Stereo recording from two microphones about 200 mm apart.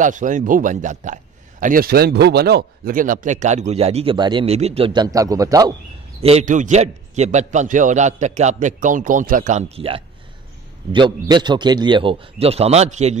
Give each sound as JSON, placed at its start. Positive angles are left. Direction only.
{"t": 0.0, "sound": "speech", "side_deg": -40}
{"t": 6.2, "sound": "a man's voice", "side_deg": -35}